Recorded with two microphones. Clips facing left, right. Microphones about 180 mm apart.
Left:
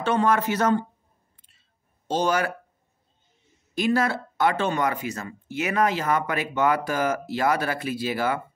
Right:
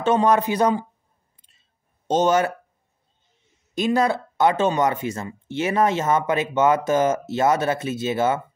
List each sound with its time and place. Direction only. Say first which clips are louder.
0.0 s speech: right 4 dB; 20° right (ahead or behind)
2.0 s speech: right 5 dB; 25° right (ahead or behind)
3.7 s speech: right 3 dB; 20° right (ahead or behind)